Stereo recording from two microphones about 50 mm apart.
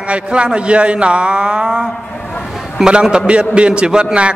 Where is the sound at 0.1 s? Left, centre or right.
Right.